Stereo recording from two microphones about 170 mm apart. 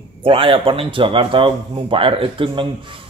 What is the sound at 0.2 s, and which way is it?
A man's voice, 30° right (ahead or behind).